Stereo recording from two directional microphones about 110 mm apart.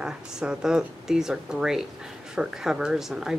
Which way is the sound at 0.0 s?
5° right (ahead or behind).